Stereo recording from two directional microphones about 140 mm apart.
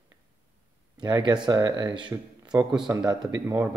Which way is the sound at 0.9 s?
30° right (ahead or behind).